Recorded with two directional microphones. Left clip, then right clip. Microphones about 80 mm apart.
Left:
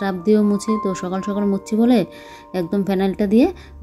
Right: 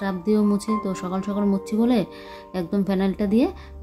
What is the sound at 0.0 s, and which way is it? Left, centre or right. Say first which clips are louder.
A woman's voice: left 5 dB; left.